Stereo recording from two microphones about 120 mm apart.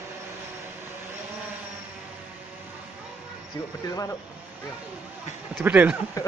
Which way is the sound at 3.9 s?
30° left (ahead or behind).